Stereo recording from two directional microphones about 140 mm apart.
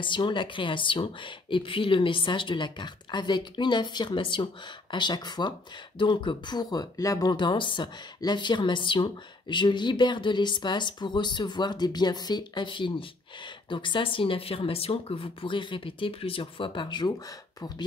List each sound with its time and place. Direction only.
0.0 s speech: 35° left (ahead or behind)